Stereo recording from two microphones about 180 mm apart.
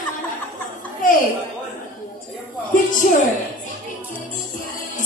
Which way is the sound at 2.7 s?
50° left (ahead or behind).